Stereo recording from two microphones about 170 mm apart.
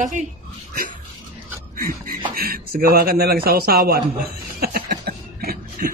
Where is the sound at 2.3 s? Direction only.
60° right (ahead or behind).